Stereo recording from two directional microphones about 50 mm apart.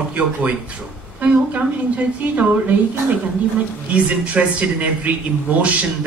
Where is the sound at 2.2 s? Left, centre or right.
Right.